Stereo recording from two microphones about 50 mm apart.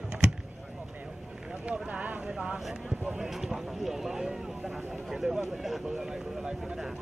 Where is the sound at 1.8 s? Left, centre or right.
Right.